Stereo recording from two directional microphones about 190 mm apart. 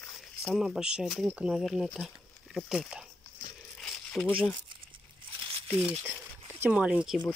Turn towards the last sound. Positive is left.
turn(degrees=-5)  # may be behind; listen again after turning